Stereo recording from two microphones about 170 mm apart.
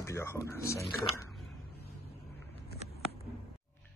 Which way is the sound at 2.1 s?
70° left (ahead or behind).